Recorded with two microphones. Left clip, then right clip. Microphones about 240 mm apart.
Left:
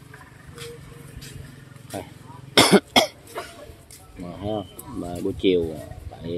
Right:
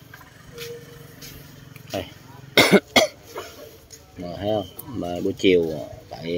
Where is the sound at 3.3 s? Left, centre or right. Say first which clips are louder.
Left 1 dB; left.